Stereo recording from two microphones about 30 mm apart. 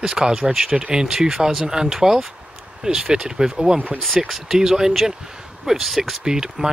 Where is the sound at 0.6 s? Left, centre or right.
Centre.